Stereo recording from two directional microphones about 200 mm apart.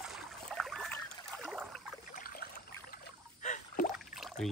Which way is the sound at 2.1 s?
45° left (ahead or behind).